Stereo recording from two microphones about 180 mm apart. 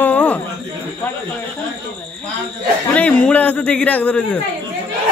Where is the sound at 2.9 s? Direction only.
5° left (ahead or behind).